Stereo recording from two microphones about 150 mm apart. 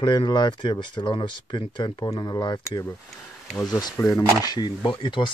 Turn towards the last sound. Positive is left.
turn(degrees=30)  # may be behind; listen again after turning